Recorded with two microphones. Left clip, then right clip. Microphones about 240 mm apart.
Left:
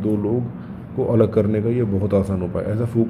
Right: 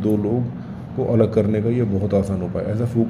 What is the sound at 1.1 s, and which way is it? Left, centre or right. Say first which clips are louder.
A man's voice: even; centre.